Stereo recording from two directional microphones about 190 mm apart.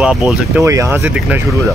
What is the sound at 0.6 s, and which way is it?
Speech, 15° right (ahead or behind).